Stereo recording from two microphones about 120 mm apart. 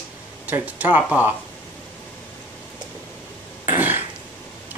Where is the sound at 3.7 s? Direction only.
15° right (ahead or behind).